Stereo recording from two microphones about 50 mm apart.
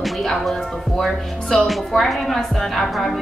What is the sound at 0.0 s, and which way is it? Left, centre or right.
A woman's voice, centre.